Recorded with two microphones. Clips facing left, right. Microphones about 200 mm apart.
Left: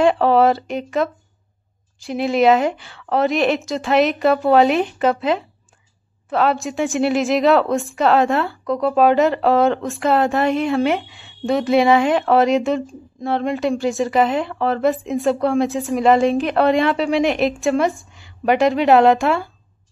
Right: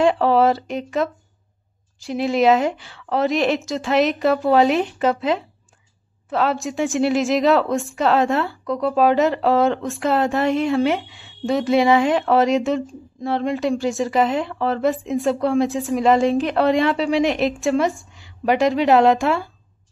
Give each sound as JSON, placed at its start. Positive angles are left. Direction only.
{"t": 0.0, "sound": "speech", "side_deg": 60}